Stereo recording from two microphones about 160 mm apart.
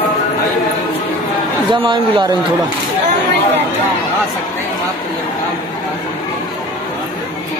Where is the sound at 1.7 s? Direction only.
30° right (ahead or behind).